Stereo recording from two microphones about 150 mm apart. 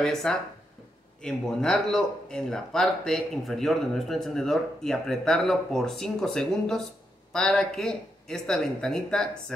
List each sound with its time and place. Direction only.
0.0 s speech: 5° left (ahead or behind)